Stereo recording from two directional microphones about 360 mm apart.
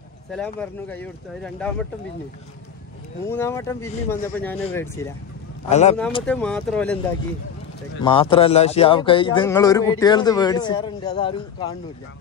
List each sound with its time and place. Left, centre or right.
0.3 s speech: centre
3.3 s a man's voice: centre
5.7 s speech: centre
6.2 s speech: centre
8.0 s a man's voice: centre